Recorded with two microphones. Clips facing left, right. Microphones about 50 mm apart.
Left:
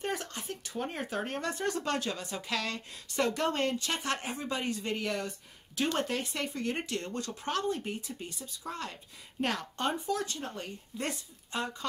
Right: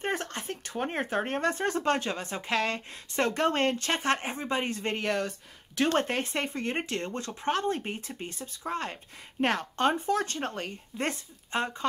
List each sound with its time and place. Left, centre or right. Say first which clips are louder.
0.0 s speech: right 4 dB; right
5.9 s speech: right 4 dB; right
11.0 s speech: right 4 dB; right